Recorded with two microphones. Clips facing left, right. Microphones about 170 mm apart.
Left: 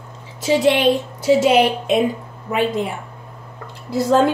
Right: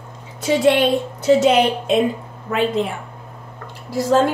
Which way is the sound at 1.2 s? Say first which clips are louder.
Even; 10° left (ahead or behind).